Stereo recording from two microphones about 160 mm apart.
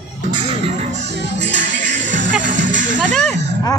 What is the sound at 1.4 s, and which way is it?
Music, 90° right.